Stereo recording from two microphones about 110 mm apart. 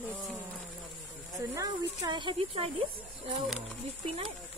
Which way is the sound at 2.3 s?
65° right (ahead or behind).